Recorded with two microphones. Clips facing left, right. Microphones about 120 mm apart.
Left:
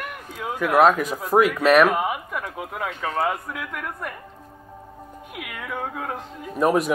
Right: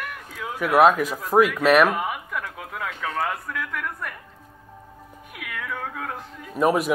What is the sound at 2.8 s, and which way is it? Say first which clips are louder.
Speech: left 3 dB; 25° left (ahead or behind).